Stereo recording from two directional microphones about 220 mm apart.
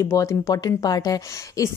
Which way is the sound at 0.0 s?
15° left (ahead or behind).